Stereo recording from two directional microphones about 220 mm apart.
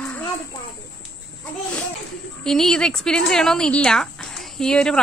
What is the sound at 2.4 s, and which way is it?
A woman's voice, centre (ahead or behind).